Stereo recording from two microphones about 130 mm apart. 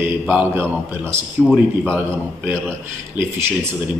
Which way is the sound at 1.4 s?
5° left (ahead or behind).